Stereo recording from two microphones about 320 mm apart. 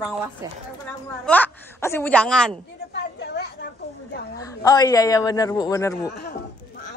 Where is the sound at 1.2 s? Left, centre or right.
Centre.